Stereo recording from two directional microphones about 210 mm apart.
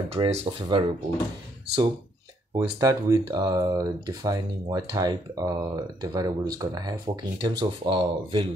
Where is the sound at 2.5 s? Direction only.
15° right (ahead or behind).